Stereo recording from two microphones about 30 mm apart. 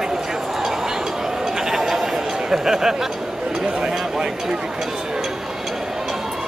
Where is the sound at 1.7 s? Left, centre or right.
Centre.